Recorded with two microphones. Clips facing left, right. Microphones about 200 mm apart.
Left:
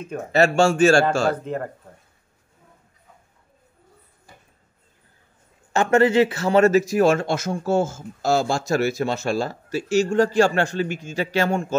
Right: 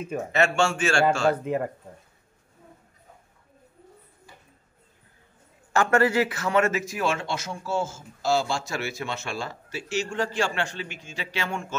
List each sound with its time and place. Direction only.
0.3 s speech: 35° left (ahead or behind)
1.3 s speech: 10° right (ahead or behind)
5.7 s speech: 20° left (ahead or behind); by 11.7 s 40° left (ahead or behind)